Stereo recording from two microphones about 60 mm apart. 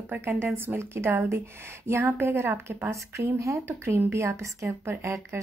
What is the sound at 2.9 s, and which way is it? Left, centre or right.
Speech, right.